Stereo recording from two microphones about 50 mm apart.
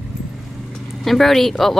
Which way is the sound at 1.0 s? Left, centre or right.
Centre.